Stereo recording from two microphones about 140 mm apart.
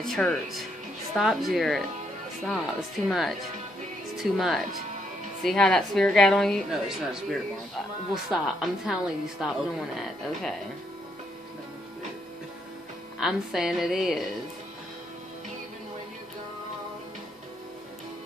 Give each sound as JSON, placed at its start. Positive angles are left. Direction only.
{"t": 0.0, "sound": "a woman's voice", "side_deg": 5}
{"t": 3.1, "sound": "a woman's voice", "side_deg": 0}
{"t": 13.2, "sound": "a woman's voice", "side_deg": -5}